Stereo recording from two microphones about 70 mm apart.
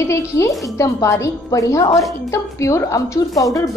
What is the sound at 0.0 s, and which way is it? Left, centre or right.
A woman's voice, left.